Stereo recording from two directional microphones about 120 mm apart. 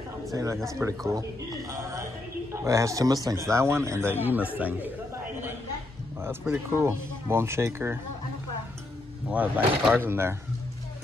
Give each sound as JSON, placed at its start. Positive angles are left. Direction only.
{"t": 0.3, "sound": "a man's voice", "side_deg": -25}
{"t": 4.6, "sound": "chatter", "side_deg": -15}
{"t": 6.7, "sound": "a man's voice", "side_deg": -20}
{"t": 9.3, "sound": "a man's voice", "side_deg": -15}